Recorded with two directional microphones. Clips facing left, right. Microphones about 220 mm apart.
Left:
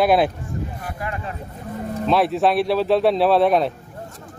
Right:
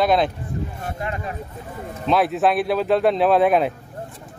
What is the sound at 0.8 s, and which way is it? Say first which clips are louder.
Speech: right 1 dB; 25° right (ahead or behind).